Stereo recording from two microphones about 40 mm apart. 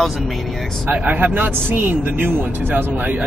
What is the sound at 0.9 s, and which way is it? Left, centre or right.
A man's voice, right.